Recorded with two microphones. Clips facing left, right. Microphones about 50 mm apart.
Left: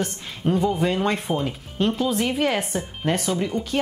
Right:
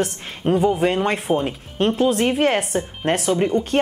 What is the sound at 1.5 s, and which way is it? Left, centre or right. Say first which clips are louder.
A woman's voice: right 3 dB; right.